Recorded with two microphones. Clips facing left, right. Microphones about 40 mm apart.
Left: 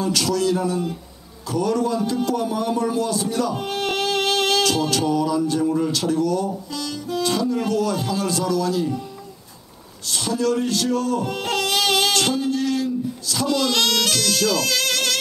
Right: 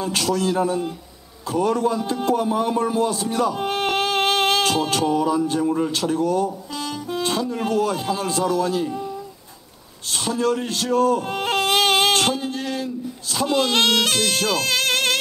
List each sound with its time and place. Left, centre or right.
0.0 s speech: right
10.0 s baby cry: right